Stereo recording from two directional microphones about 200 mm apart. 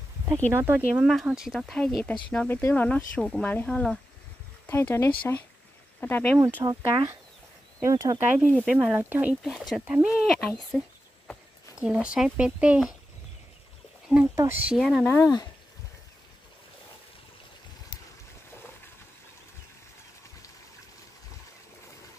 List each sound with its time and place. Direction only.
0.5 s speech: 10° right (ahead or behind); by 6.4 s 10° left (ahead or behind)
6.4 s speech: 15° right (ahead or behind)
8.6 s speech: 5° right (ahead or behind)
10.7 s speech: 5° left (ahead or behind)
11.8 s speech: 5° right (ahead or behind)
14.0 s speech: 5° right (ahead or behind)
15.1 s speech: 15° left (ahead or behind)